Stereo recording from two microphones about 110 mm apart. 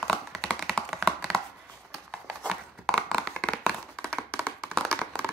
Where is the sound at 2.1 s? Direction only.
5° left (ahead or behind).